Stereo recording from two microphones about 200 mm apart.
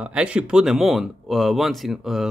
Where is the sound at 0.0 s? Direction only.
5° right (ahead or behind).